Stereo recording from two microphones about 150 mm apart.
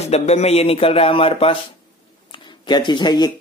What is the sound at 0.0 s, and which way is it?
Speech, 45° left (ahead or behind).